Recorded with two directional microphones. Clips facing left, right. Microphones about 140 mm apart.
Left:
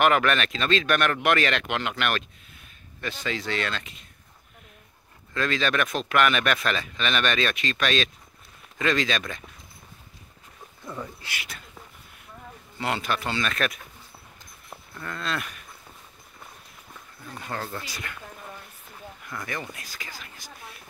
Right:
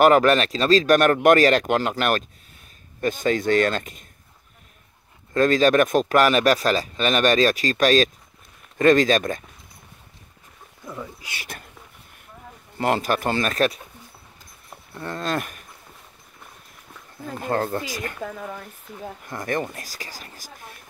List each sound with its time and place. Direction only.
0.0 s speech: 35° right (ahead or behind)
5.3 s speech: 40° right (ahead or behind)
10.9 s speech: 5° right (ahead or behind)
12.7 s speech: 45° right (ahead or behind)
15.0 s speech: 35° right (ahead or behind)
17.4 s speech: 50° right (ahead or behind)
18.2 s speech: 90° right
19.2 s speech: 45° right (ahead or behind)